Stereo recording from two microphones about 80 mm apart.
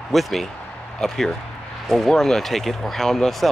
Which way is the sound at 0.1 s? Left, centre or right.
Centre.